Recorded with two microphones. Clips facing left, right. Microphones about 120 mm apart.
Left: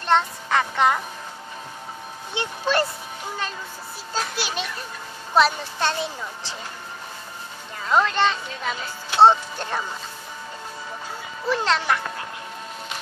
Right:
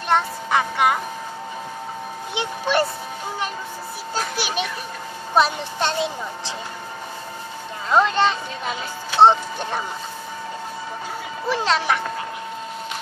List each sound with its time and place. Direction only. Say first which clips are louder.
0.1 s music: even; 10° right (ahead or behind)
2.3 s speech: right 2 dB; 15° right (ahead or behind)
4.1 s a sound: right 2 dB; 15° right (ahead or behind)
5.3 s speech: even; 20° right (ahead or behind)
7.9 s speech: right 2 dB; 20° right (ahead or behind)
11.4 s speech: right 1 dB; 15° right (ahead or behind)